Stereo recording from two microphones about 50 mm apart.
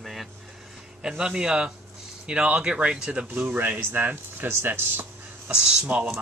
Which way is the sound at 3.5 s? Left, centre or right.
Right.